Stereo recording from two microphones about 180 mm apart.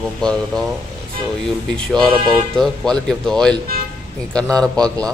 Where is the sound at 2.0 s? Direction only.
25° right (ahead or behind).